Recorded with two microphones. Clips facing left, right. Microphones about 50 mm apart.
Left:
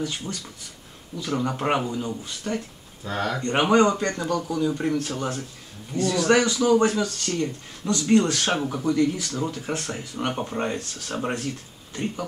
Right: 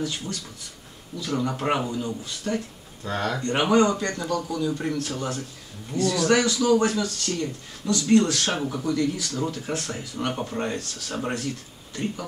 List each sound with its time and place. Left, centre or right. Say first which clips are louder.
0.0 s speech: even; centre
2.5 s speech: right 1 dB; centre
3.4 s a man's voice: left 1 dB; centre